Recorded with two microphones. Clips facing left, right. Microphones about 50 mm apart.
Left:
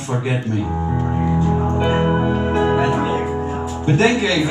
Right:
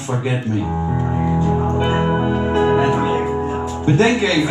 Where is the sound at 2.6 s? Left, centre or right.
Centre.